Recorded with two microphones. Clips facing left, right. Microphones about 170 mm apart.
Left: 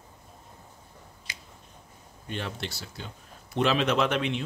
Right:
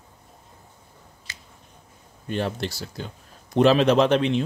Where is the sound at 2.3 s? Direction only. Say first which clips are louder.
Right 8 dB; 40° right (ahead or behind).